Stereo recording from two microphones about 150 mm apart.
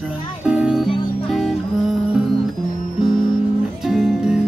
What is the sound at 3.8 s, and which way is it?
Music, 5° right (ahead or behind).